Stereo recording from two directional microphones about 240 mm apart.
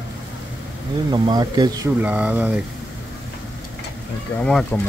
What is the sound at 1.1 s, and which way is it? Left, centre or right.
Speech, centre.